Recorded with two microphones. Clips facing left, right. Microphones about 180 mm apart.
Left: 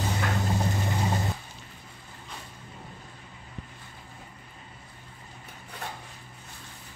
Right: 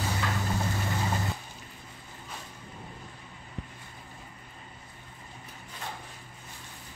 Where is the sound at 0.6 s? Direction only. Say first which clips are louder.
Left 3 dB; 20° left (ahead or behind).